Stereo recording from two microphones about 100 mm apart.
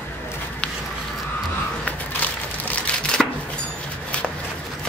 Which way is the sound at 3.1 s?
5° left (ahead or behind).